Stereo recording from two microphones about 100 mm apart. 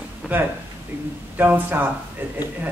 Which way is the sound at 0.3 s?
15° right (ahead or behind).